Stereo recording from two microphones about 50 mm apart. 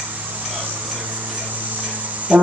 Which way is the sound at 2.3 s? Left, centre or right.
Right.